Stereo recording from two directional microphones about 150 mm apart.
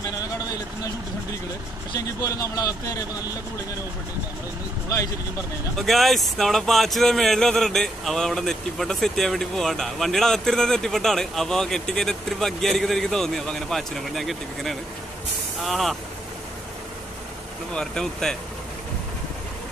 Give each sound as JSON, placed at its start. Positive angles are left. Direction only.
{"t": 2.0, "sound": "speech", "side_deg": 20}
{"t": 5.8, "sound": "speech", "side_deg": 0}
{"t": 17.7, "sound": "speech", "side_deg": 5}